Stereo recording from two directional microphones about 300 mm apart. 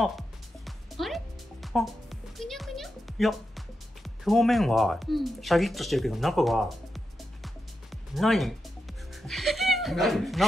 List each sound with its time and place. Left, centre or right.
0.7 s music: centre